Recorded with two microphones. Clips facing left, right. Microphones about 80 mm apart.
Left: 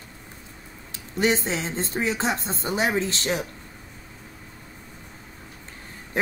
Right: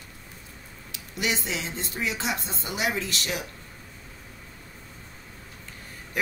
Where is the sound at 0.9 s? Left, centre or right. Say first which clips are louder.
Left 7 dB; left.